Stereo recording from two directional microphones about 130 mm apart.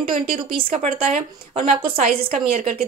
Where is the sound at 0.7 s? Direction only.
65° right (ahead or behind).